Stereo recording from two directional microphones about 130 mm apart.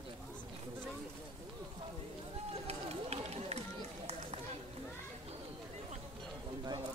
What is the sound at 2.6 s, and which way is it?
Run, 50° right (ahead or behind).